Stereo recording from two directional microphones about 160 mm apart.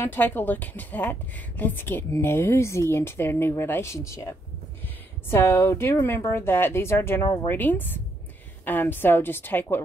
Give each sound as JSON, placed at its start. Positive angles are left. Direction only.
{"t": 0.0, "sound": "a woman's voice", "side_deg": 15}